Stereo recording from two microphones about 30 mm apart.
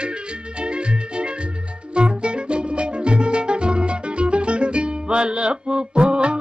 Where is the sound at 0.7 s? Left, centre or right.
Right.